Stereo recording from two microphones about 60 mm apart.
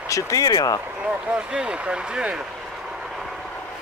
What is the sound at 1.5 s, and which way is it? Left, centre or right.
Speech, centre.